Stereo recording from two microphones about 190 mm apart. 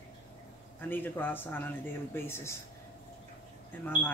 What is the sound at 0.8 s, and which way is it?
Speech, 10° left (ahead or behind).